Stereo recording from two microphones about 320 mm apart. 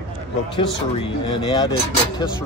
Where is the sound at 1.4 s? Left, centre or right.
Centre.